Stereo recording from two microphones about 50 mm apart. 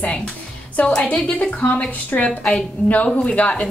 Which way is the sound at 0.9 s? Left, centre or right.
Left.